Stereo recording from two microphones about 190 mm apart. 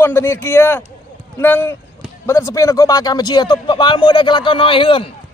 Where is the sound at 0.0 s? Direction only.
10° left (ahead or behind); by 5.1 s 30° left (ahead or behind).